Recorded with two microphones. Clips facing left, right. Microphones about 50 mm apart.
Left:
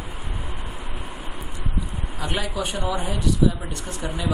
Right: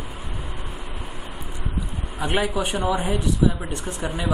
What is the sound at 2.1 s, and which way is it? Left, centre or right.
Speech, centre.